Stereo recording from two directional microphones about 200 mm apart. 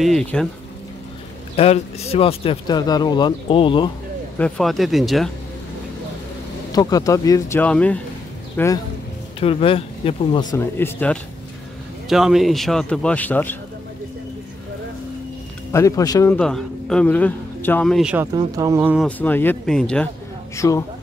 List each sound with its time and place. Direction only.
0.0 s speech: 5° left (ahead or behind)
1.6 s speech: 30° left (ahead or behind)
4.4 s speech: centre (ahead or behind)
6.7 s speech: 20° left (ahead or behind)
9.4 s speech: 30° left (ahead or behind)
10.6 s speech: 10° left (ahead or behind)
12.1 s speech: centre (ahead or behind)
15.7 s speech: 15° left (ahead or behind)
16.3 s a man's voice: 5° left (ahead or behind)
19.0 s speech: 10° left (ahead or behind)
20.5 s speech: 15° left (ahead or behind)